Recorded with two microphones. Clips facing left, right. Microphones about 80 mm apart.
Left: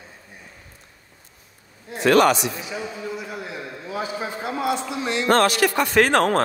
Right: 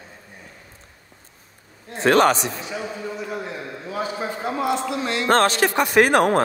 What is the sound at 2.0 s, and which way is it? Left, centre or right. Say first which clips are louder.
Speech: even; right.